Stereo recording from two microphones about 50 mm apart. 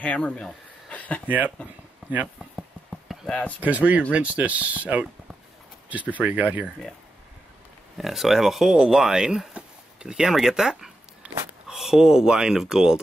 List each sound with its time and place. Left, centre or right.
0.0 s speech: left
0.9 s a sound: left
1.2 s speech: right
2.3 s a sound: centre
3.3 s speech: left
3.6 s speech: right
8.0 s speech: centre